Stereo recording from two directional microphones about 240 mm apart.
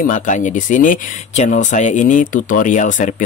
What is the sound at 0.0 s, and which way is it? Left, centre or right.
Speech, left.